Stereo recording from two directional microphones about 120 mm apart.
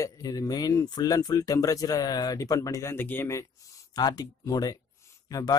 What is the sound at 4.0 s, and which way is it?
Speech, 35° left (ahead or behind).